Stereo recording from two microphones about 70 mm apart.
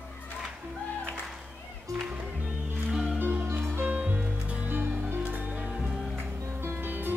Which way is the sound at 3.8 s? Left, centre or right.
Centre.